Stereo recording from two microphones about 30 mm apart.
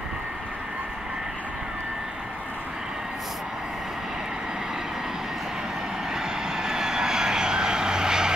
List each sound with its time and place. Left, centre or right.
6.1 s vehicle: centre